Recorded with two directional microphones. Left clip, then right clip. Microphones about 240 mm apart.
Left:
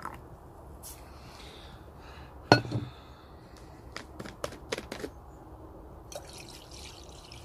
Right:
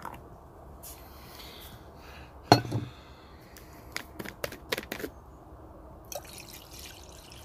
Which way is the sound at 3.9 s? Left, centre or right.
Right.